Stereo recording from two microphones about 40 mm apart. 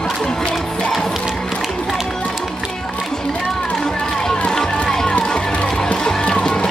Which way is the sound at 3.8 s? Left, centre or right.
Centre.